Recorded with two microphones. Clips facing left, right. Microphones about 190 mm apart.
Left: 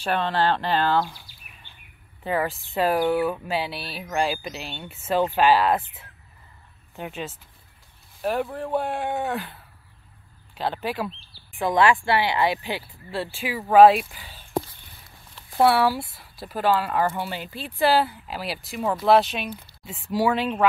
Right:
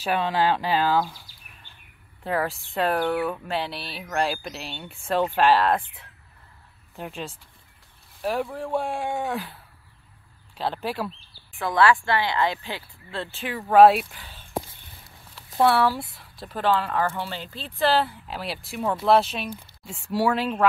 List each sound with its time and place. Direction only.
0.0 s speech: 10° right (ahead or behind)
2.2 s speech: centre (ahead or behind)
11.5 s speech: 20° left (ahead or behind); by 14.4 s 5° left (ahead or behind)
15.5 s speech: 5° left (ahead or behind)